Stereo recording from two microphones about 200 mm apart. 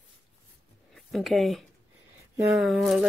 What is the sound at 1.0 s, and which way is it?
Speech, centre (ahead or behind).